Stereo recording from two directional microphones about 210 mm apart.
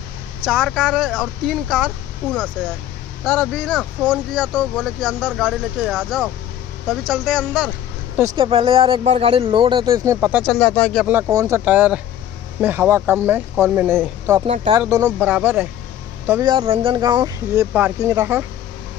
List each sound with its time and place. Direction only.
0.5 s speech: 5° left (ahead or behind)
8.5 s speech: 25° right (ahead or behind)
10.5 s speech: 5° left (ahead or behind)
11.1 s speech: 10° right (ahead or behind)
14.4 s speech: 25° right (ahead or behind)
14.8 s speech: 15° right (ahead or behind)
16.3 s speech: 20° right (ahead or behind)